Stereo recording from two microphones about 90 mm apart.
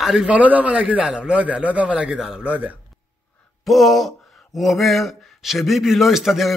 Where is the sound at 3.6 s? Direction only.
Centre (ahead or behind).